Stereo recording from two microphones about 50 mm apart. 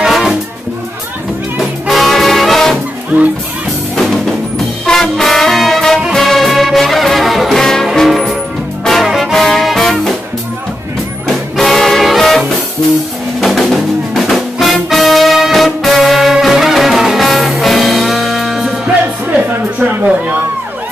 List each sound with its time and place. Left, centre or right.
0.0 s music: centre
1.6 s music: centre
3.1 s speech: right
3.9 s music: centre
6.1 s brass instrument: centre
8.8 s music: centre
11.2 s music: centre
19.8 s a sound: right